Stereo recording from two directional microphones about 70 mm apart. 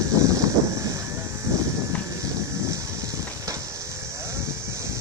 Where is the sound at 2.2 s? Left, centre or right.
Right.